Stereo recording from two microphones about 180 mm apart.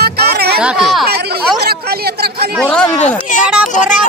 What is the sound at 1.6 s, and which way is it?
Speech, 60° right (ahead or behind).